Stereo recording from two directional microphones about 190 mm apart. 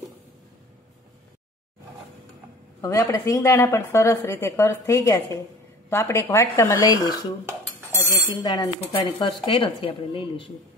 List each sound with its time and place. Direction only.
2.8 s a woman's voice: 15° left (ahead or behind)
7.9 s bicycle bell: 15° left (ahead or behind)
8.4 s speech: 20° left (ahead or behind)